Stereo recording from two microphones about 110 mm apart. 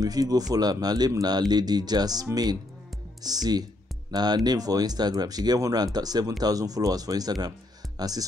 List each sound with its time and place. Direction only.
0.0 s speech: 35° right (ahead or behind)